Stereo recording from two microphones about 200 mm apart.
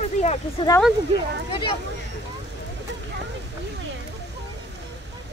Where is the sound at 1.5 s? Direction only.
25° left (ahead or behind).